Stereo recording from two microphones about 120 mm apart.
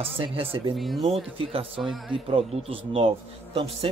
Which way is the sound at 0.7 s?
Centre (ahead or behind).